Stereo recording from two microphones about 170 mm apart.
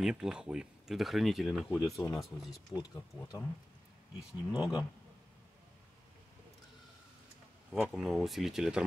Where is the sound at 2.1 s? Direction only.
Centre (ahead or behind).